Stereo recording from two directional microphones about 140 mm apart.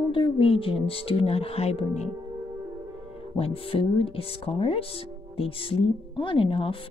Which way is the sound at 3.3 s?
40° left (ahead or behind).